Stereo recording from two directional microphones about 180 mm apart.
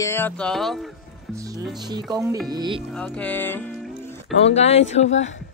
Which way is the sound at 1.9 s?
20° right (ahead or behind).